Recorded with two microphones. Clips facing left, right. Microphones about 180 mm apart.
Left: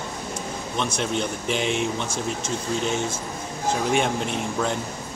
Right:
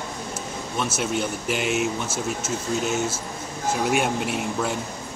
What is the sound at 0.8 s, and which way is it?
Speech, 5° right (ahead or behind).